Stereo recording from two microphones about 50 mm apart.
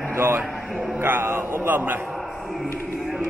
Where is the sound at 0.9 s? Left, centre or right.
Right.